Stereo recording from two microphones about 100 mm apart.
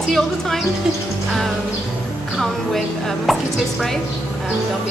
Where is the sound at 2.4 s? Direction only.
Centre (ahead or behind).